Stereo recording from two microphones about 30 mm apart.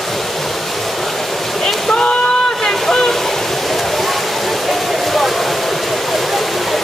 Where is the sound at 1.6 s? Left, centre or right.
Centre.